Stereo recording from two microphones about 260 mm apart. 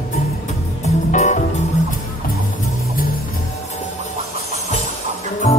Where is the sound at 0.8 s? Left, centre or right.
Left.